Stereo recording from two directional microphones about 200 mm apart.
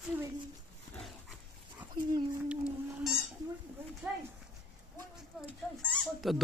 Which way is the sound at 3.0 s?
Centre (ahead or behind).